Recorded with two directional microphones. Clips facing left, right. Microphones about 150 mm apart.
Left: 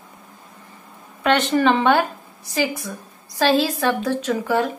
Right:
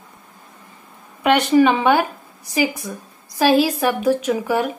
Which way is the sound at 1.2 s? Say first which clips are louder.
Right 4 dB; 10° right (ahead or behind).